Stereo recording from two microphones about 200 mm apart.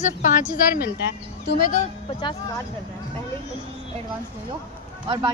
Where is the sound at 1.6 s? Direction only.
40° left (ahead or behind).